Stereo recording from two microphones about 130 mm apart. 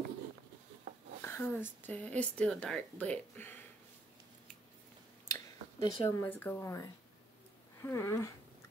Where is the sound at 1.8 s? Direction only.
10° left (ahead or behind).